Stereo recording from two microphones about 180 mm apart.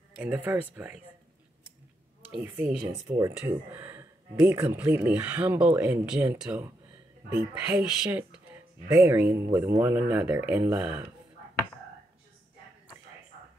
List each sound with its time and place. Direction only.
0.1 s speech: 10° right (ahead or behind)
2.3 s speech: 10° right (ahead or behind)
2.9 s speech: 20° right (ahead or behind)
3.3 s speech: 10° right (ahead or behind)